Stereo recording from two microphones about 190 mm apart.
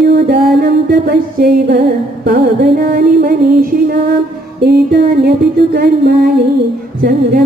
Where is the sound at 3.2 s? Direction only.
50° right (ahead or behind).